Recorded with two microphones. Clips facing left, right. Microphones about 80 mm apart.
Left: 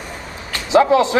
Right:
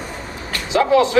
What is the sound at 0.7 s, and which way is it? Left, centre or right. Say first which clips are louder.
Speech: left 2 dB; left.